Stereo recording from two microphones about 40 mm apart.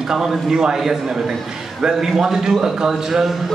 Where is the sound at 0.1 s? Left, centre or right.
Centre.